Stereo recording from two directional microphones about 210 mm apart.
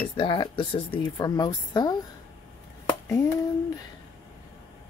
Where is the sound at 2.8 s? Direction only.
15° left (ahead or behind).